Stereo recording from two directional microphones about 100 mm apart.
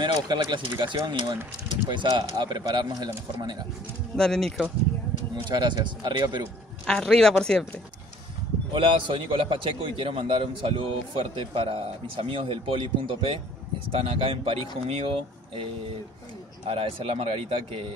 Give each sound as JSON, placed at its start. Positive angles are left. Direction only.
{"t": 0.0, "sound": "speech", "side_deg": -45}
{"t": 4.2, "sound": "speech", "side_deg": 5}
{"t": 5.5, "sound": "speech", "side_deg": -45}
{"t": 6.9, "sound": "speech", "side_deg": 5}
{"t": 8.7, "sound": "a man's voice", "side_deg": -55}
{"t": 14.8, "sound": "speech", "side_deg": -90}
{"t": 16.6, "sound": "speech", "side_deg": -75}